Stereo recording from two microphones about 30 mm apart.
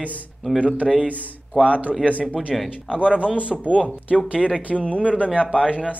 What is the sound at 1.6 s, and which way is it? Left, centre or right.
Speech, right.